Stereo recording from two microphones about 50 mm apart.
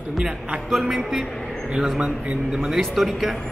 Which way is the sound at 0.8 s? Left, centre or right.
Centre.